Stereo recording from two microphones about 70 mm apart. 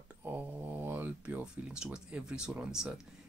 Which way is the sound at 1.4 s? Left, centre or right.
Centre.